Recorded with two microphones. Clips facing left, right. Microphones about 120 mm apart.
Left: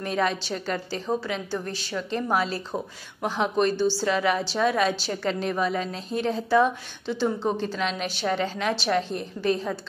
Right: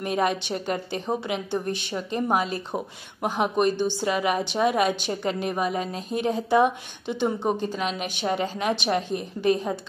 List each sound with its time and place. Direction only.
0.0 s a woman's voice: 15° right (ahead or behind)